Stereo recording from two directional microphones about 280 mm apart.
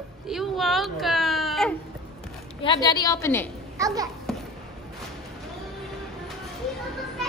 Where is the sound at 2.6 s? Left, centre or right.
Centre.